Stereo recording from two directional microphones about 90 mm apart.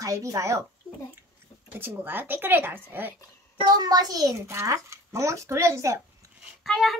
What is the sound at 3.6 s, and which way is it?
A child's voice, 50° right (ahead or behind).